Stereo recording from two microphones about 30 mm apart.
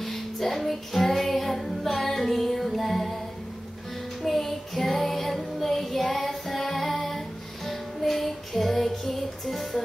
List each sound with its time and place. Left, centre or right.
0.0 s music: centre
4.2 s child singing: centre
7.6 s music: centre